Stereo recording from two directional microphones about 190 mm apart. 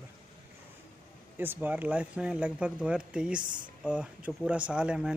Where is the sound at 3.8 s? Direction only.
5° right (ahead or behind).